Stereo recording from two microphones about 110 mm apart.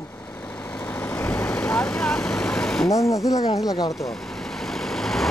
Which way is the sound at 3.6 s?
45° left (ahead or behind).